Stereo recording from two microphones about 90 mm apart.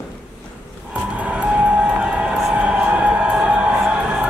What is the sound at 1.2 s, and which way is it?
Music, 15° right (ahead or behind).